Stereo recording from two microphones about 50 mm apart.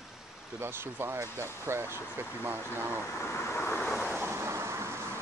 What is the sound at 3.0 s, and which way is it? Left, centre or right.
Vehicle, left.